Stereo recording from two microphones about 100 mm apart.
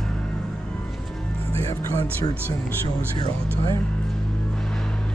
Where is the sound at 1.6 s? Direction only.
30° left (ahead or behind).